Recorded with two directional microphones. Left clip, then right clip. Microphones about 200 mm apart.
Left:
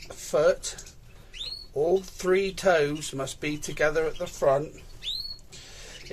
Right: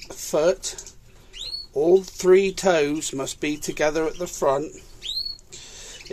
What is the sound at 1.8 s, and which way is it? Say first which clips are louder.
Speech: right 6 dB; 35° right (ahead or behind).